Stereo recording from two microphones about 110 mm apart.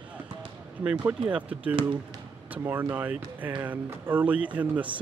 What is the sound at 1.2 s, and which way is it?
Speech, 10° right (ahead or behind).